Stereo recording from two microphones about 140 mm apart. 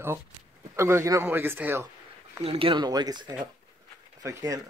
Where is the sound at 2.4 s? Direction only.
40° right (ahead or behind); by 4.6 s 25° right (ahead or behind).